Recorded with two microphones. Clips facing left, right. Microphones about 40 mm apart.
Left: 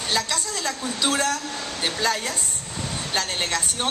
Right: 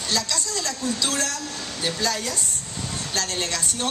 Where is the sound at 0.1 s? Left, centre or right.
Left.